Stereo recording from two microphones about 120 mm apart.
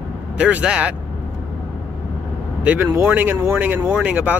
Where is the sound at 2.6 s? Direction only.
15° right (ahead or behind).